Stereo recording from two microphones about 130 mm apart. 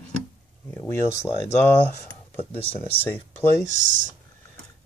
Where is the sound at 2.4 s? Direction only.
45° left (ahead or behind).